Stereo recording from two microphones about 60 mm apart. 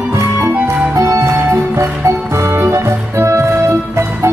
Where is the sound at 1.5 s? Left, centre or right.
Right.